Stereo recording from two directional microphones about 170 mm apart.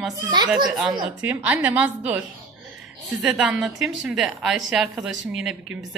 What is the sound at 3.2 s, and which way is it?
Speech, 5° right (ahead or behind).